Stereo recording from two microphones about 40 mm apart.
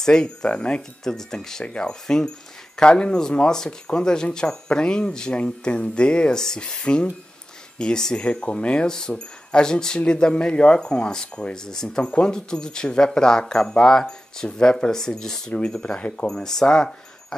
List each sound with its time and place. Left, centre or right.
0.0 s speech: centre
1.0 s speech: centre
15.8 s speech: left
16.3 s speech: centre